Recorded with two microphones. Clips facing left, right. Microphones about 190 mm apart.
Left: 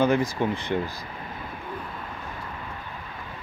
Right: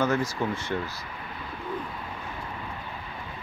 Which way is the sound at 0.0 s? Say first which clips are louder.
Left 4 dB; 15° left (ahead or behind).